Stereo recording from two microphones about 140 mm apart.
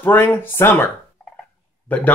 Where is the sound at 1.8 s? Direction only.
10° left (ahead or behind).